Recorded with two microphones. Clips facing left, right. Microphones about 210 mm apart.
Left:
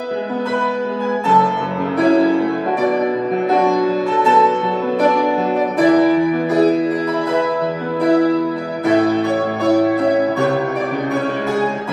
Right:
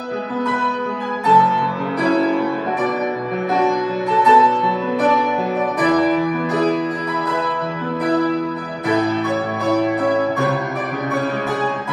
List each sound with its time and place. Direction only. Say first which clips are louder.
2.0 s music: left 4 dB; 30° left (ahead or behind)
5.8 s music: left 5 dB; 30° left (ahead or behind)